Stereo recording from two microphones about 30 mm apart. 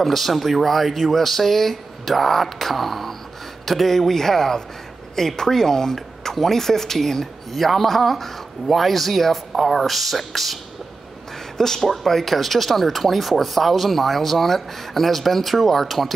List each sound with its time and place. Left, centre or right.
0.0 s speech: centre
11.5 s speech: centre